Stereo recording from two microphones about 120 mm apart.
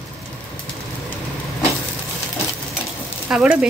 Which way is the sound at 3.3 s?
5° right (ahead or behind).